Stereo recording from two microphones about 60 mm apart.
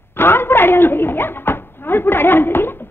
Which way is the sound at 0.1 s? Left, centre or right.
Left.